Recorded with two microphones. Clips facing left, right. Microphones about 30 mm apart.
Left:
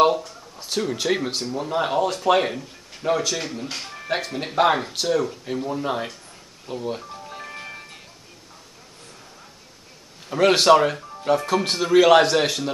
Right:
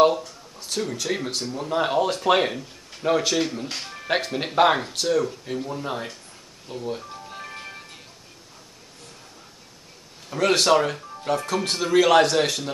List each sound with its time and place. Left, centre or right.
0.6 s a sound: centre
0.9 s speech: centre
1.8 s speech: centre
3.2 s speech: centre
3.5 s speech: centre
7.1 s music: centre
10.3 s speech: centre